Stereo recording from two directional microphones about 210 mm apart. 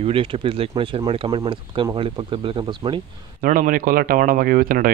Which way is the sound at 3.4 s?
40° right (ahead or behind).